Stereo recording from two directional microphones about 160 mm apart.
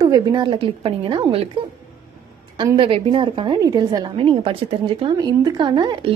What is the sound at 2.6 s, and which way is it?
A woman's voice, 30° right (ahead or behind).